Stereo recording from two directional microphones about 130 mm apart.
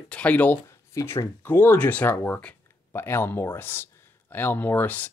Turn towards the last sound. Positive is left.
turn(degrees=15)  # may be behind; listen again after turning